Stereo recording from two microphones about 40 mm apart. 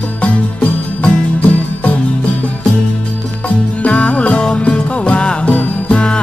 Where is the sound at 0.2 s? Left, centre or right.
Left.